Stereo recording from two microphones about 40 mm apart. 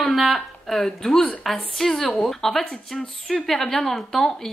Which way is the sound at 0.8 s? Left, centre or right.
Centre.